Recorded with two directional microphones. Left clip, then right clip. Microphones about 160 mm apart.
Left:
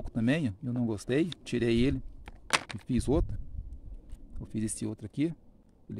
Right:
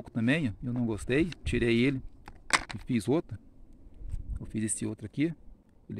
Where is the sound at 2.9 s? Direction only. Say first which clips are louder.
Even; centre (ahead or behind).